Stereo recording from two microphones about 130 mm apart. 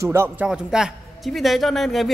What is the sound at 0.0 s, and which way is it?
Speech, 20° right (ahead or behind).